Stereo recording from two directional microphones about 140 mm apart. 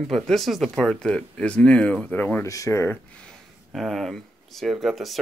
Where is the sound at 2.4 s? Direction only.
20° left (ahead or behind).